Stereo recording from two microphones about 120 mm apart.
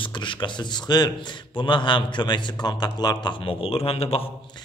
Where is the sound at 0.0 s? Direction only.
45° left (ahead or behind).